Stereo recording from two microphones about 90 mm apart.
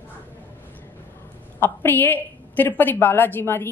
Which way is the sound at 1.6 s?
25° left (ahead or behind).